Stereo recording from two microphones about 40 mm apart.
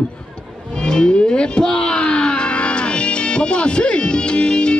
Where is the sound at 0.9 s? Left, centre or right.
Left.